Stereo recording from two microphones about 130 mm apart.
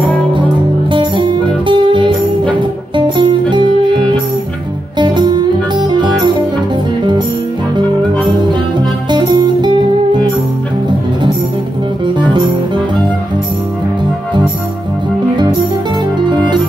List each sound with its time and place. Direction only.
0.9 s music: 40° right (ahead or behind)
3.2 s music: 40° right (ahead or behind)
9.1 s music: 35° right (ahead or behind)
12.2 s music: 35° right (ahead or behind)